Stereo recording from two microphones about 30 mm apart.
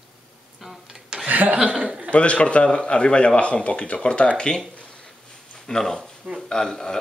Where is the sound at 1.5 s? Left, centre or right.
Right.